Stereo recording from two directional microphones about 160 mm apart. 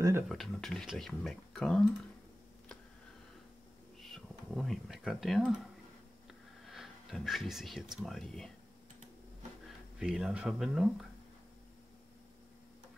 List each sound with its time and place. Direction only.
0.3 s speech: centre (ahead or behind)
4.0 s speech: centre (ahead or behind)
6.6 s speech: centre (ahead or behind)
9.9 s speech: 5° right (ahead or behind)